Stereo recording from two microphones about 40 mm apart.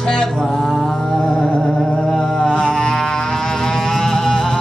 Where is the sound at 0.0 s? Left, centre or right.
Centre.